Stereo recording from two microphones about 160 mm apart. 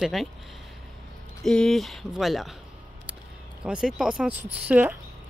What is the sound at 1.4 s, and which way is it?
Speech, 5° left (ahead or behind).